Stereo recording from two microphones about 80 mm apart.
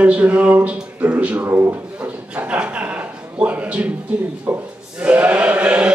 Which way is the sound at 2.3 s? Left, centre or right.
Centre.